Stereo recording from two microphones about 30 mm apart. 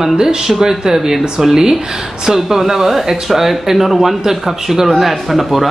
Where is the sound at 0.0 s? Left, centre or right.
Centre.